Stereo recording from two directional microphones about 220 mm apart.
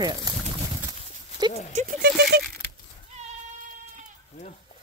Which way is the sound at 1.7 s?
40° right (ahead or behind).